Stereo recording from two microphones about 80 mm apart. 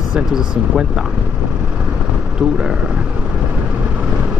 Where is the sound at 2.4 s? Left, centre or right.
Centre.